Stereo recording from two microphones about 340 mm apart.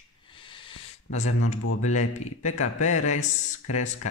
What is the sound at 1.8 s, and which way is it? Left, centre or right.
A man's voice, left.